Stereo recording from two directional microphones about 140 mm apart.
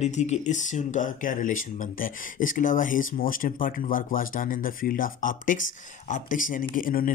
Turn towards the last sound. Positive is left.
turn(degrees=85)